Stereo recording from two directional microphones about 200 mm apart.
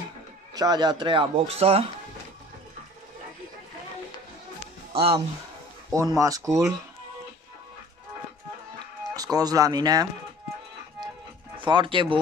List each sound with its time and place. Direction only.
0.6 s speech: 20° right (ahead or behind)
4.9 s speech: 25° right (ahead or behind)
9.1 s speech: 20° right (ahead or behind)
11.5 s speech: 25° right (ahead or behind)